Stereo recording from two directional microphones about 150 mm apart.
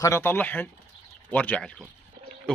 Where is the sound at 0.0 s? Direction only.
15° left (ahead or behind).